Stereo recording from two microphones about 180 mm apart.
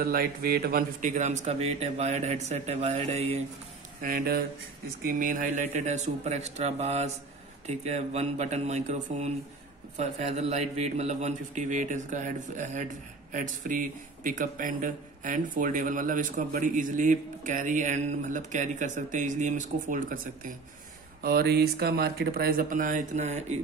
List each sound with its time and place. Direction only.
0.0 s speech: 55° right (ahead or behind); by 3.3 s 35° right (ahead or behind)
4.0 s speech: 55° right (ahead or behind)
21.2 s speech: 60° right (ahead or behind); by 23.4 s 40° right (ahead or behind)